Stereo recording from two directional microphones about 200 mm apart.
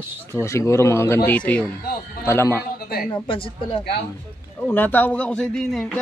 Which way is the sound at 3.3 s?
25° left (ahead or behind).